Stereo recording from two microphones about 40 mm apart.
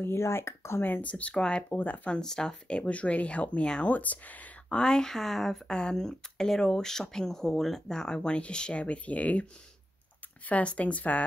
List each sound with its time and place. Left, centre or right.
0.0 s speech: left
1.0 s speech: left
1.7 s speech: left
2.2 s speech: centre
2.7 s speech: left
4.6 s speech: left
7.9 s speech: centre; by 9.5 s left
10.5 s speech: left